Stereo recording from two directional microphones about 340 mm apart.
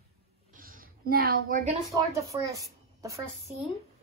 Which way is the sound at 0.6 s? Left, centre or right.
Right.